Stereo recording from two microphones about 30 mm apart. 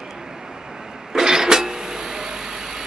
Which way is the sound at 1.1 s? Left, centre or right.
Right.